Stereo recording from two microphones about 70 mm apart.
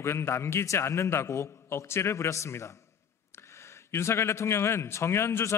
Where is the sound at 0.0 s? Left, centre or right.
Left.